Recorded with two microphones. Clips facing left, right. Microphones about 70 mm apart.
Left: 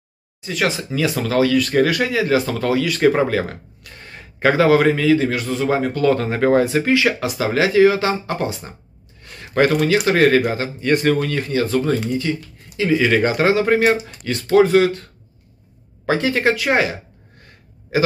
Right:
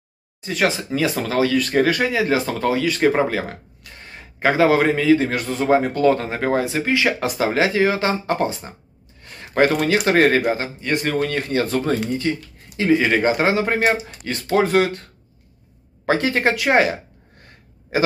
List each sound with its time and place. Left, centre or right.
0.4 s speech: right
5.1 s speech: right
5.7 s speech: right
6.3 s speech: centre
6.6 s speech: right
7.2 s speech: right
9.2 s a sound: right
9.8 s speech: right
10.8 s speech: centre
11.1 s speech: right
16.1 s speech: right